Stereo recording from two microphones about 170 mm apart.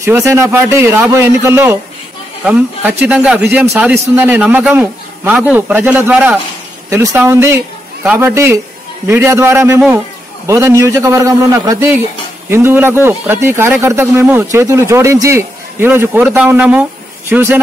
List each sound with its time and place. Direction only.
0.0 s a man's voice: 15° right (ahead or behind)